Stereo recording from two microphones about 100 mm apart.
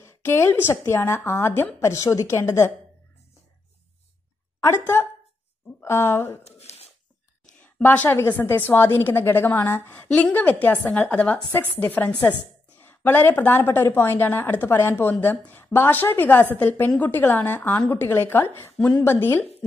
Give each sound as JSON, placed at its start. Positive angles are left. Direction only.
{"t": 0.0, "sound": "a woman's voice", "side_deg": 25}
{"t": 4.6, "sound": "a woman's voice", "side_deg": 25}
{"t": 6.4, "sound": "a sound", "side_deg": 90}
{"t": 7.6, "sound": "a woman's voice", "side_deg": 15}